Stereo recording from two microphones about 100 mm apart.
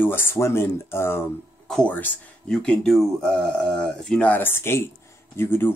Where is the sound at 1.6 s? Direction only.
10° left (ahead or behind).